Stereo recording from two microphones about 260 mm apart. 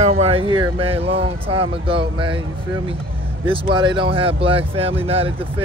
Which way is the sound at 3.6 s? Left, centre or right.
Centre.